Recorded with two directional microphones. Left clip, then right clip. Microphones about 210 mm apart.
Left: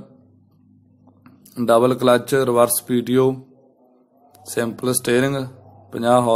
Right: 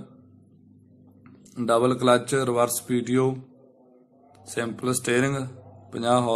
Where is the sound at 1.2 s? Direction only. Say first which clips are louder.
Left 7 dB; 15° left (ahead or behind).